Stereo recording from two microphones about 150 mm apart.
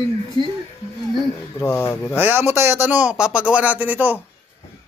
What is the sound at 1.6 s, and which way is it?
Speech, 15° left (ahead or behind).